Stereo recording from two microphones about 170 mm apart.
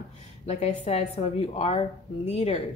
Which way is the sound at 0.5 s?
40° left (ahead or behind).